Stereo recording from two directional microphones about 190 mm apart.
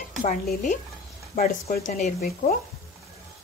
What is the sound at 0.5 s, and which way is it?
Speech, 45° left (ahead or behind).